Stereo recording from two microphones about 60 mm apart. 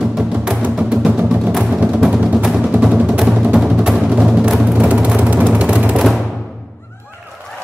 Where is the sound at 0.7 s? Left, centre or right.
Centre.